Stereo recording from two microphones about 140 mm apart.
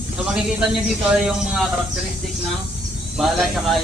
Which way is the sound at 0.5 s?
5° right (ahead or behind).